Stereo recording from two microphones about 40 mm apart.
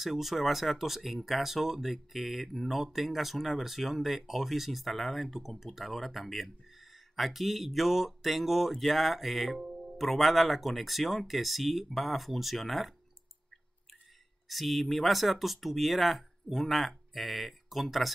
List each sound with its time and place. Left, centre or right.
0.0 s speech: centre
9.6 s music: right
9.9 s speech: centre
14.5 s speech: centre